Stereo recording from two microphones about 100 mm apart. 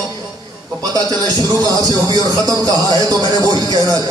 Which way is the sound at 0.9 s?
45° right (ahead or behind).